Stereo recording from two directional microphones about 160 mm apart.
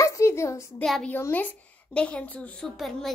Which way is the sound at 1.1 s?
10° left (ahead or behind).